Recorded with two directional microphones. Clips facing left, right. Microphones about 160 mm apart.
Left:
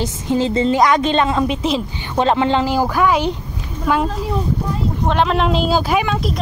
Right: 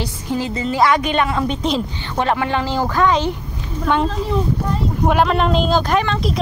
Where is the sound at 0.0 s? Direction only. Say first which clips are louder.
Left 4 dB; 20° left (ahead or behind).